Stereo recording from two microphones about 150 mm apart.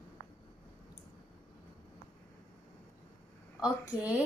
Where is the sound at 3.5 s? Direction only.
10° right (ahead or behind).